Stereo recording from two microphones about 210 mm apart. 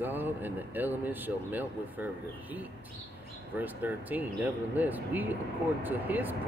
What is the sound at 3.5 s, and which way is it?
Speech, 10° right (ahead or behind).